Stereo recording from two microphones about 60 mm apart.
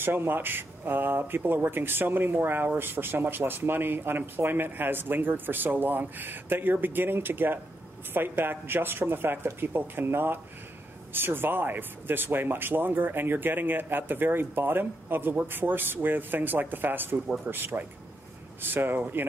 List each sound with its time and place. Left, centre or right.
0.0 s speech: right